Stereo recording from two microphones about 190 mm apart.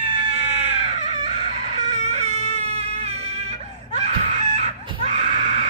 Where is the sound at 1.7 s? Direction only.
35° right (ahead or behind).